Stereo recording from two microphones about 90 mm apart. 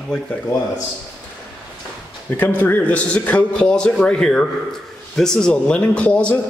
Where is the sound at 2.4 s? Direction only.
20° left (ahead or behind).